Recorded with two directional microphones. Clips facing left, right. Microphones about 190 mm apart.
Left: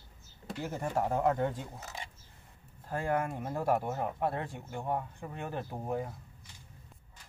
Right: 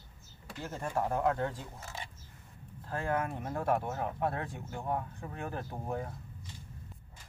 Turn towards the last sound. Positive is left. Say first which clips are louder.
# left 2 dB
turn(degrees=10)  # may be behind; listen again after turning